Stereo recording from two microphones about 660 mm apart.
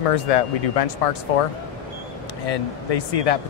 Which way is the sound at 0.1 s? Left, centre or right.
Left.